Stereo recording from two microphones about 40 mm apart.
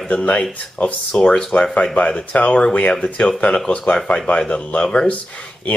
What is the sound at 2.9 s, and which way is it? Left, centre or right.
Speech, centre.